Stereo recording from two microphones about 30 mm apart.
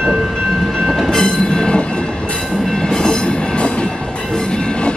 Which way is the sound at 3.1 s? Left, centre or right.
Left.